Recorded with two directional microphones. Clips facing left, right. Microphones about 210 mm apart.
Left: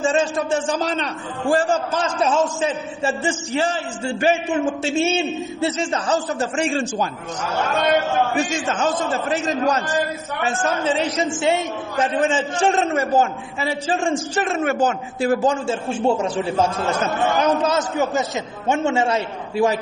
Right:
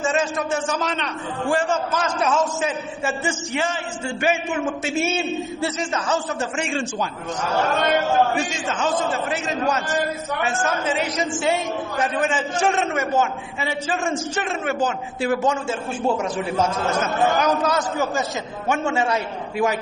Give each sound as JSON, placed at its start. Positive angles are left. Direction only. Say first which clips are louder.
{"t": 0.0, "sound": "a man's voice", "louder": "left 3 dB", "side_deg": 30}
{"t": 8.7, "sound": "a man's voice", "louder": "right 1 dB", "side_deg": 40}